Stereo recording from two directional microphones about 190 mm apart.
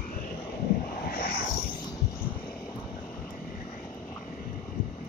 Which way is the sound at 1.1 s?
55° left (ahead or behind).